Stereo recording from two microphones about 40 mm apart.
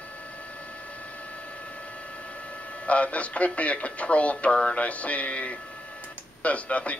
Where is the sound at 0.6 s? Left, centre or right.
Left.